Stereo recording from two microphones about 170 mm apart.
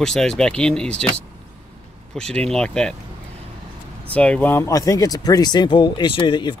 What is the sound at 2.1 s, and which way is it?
Speech, 5° left (ahead or behind).